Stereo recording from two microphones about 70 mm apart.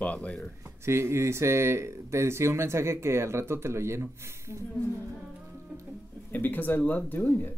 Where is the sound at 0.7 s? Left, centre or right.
Right.